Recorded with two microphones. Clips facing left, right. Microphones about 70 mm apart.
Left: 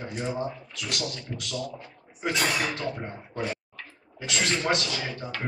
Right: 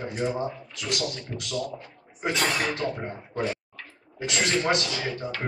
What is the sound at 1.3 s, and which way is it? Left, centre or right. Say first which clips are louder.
Speech: right 1 dB; right.